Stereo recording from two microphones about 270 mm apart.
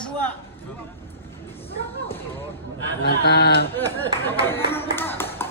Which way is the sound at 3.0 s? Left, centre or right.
Left.